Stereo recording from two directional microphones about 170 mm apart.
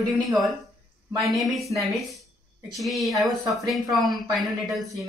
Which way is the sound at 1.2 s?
Centre (ahead or behind).